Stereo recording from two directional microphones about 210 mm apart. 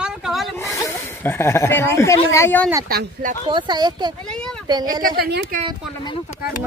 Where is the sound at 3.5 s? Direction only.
20° right (ahead or behind).